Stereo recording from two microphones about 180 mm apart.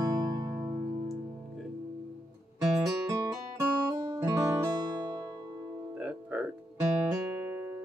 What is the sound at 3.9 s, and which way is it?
Music, 15° right (ahead or behind).